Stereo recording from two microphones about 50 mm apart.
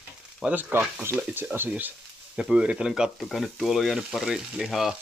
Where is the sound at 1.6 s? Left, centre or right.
Right.